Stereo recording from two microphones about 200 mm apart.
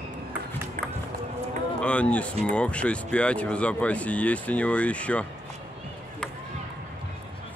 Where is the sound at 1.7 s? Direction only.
5° left (ahead or behind).